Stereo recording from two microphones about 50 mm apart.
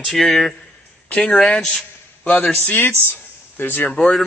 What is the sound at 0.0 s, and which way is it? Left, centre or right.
A man's voice, centre.